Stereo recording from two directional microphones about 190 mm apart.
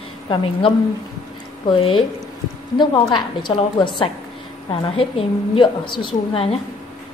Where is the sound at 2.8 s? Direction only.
25° left (ahead or behind).